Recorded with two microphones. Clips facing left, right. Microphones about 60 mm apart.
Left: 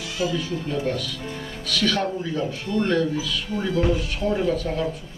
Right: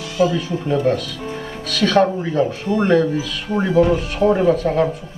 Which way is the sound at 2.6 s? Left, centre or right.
Right.